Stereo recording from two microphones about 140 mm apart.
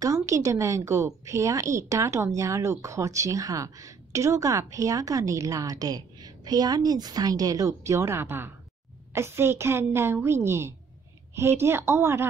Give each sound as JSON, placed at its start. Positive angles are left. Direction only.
{"t": 0.0, "sound": "a woman's voice", "side_deg": -20}